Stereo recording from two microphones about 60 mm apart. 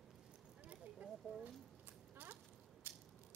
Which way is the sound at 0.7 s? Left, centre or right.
Right.